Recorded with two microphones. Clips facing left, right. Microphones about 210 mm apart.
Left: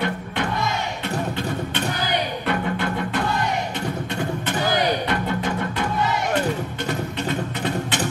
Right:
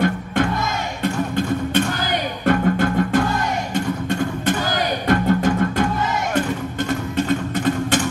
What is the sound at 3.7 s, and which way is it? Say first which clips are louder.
Beatboxing: right 5 dB; 45° right (ahead or behind).